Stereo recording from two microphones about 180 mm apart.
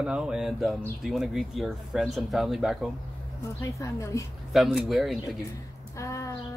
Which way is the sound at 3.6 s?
15° left (ahead or behind).